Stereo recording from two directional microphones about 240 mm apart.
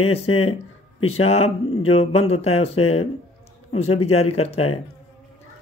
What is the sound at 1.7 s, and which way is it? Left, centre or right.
Speech, left.